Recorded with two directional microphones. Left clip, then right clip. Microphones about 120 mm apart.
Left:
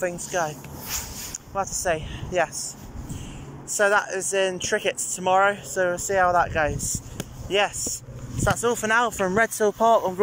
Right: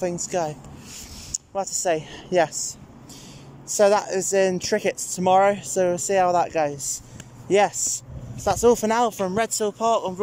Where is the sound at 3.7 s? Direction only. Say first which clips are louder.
Right 2 dB; 30° right (ahead or behind).